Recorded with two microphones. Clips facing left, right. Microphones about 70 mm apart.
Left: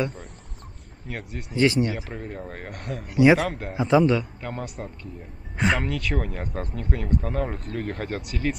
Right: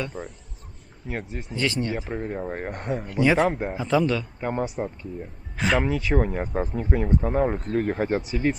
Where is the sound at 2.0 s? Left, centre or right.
Centre.